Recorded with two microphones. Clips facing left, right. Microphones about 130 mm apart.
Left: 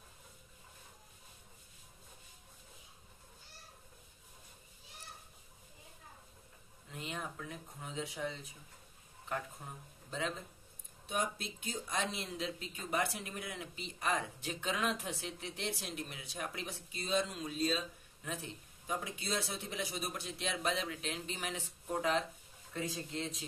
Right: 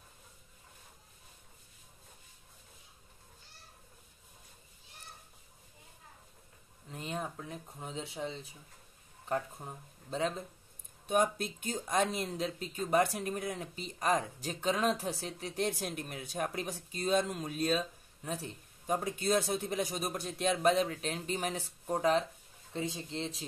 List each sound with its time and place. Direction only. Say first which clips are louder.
6.9 s a sound: right 4 dB; 35° right (ahead or behind)
9.3 s speech: right 6 dB; 35° right (ahead or behind)
11.1 s speech: right 8 dB; 50° right (ahead or behind)
18.2 s speech: right 4 dB; 40° right (ahead or behind)
22.7 s speech: right 3 dB; 25° right (ahead or behind)